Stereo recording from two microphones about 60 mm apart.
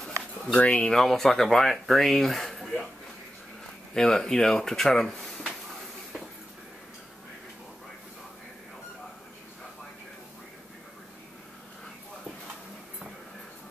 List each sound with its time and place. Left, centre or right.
0.5 s speech: centre
0.9 s speech: centre